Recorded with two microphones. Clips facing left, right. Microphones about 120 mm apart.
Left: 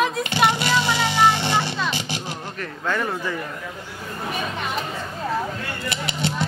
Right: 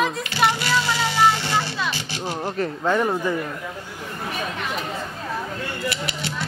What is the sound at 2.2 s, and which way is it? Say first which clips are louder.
Speech: right 7 dB; 35° right (ahead or behind).